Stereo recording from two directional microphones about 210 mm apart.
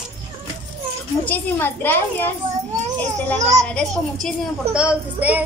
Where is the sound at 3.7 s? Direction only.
5° left (ahead or behind).